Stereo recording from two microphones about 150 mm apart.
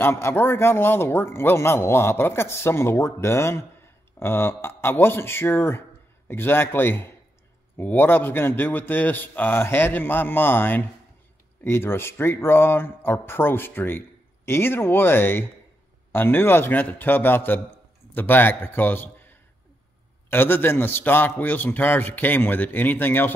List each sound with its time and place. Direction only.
0.0 s a man's voice: 15° left (ahead or behind)